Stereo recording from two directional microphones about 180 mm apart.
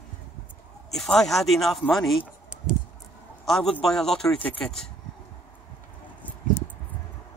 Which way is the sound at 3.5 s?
Centre (ahead or behind).